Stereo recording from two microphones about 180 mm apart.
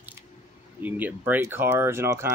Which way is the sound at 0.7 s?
10° right (ahead or behind).